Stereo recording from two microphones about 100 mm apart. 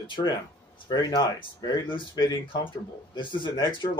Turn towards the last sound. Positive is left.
turn(degrees=50)  # may be behind; listen again after turning